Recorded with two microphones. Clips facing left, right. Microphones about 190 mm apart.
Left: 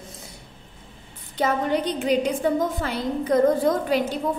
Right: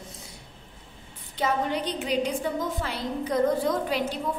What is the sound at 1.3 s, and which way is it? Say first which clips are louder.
A woman's voice: left 4 dB; 45° left (ahead or behind).